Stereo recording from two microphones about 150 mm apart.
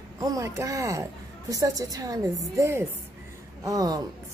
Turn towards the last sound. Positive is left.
turn(degrees=-25)  # may be behind; listen again after turning